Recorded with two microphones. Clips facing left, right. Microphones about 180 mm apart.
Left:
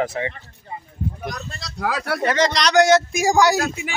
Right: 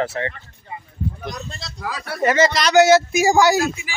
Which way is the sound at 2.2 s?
5° right (ahead or behind).